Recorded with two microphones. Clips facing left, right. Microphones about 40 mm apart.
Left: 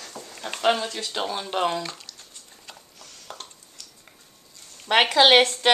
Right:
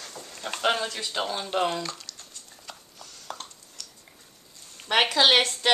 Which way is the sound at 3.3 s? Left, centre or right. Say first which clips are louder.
Right 2 dB; centre.